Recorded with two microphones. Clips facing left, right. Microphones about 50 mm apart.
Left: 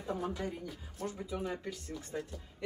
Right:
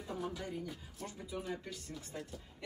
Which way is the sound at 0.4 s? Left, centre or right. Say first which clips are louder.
Left 3 dB; centre.